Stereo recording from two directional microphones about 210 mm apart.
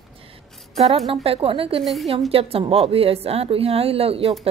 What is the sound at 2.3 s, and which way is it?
A woman's voice, 25° right (ahead or behind).